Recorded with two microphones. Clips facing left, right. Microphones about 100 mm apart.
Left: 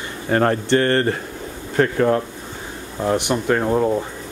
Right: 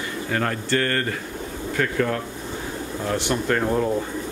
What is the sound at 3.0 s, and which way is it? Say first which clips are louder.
Speech: left 5 dB; 20° left (ahead or behind).